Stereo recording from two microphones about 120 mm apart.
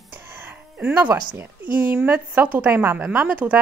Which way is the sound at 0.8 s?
15° right (ahead or behind).